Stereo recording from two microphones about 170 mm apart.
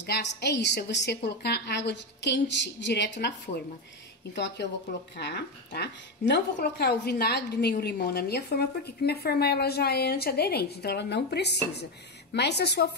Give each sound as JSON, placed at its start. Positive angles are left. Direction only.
{"t": 0.0, "sound": "a woman's voice", "side_deg": 85}
{"t": 5.1, "sound": "a woman's voice", "side_deg": 80}